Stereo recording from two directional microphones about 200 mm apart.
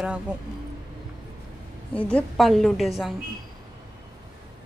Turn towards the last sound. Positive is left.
turn(degrees=0)  # may be behind; listen again after turning